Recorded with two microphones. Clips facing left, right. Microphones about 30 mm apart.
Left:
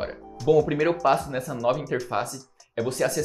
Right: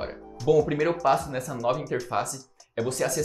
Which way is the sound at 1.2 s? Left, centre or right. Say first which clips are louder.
Left 2 dB; left.